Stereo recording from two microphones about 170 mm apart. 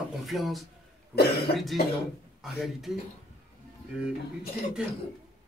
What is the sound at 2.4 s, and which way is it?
Speech, centre (ahead or behind).